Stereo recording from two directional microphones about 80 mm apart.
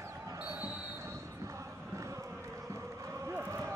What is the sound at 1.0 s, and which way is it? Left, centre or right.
Basketball bounce, right.